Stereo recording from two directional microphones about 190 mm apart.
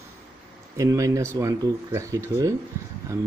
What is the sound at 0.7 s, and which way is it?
Speech, 15° right (ahead or behind).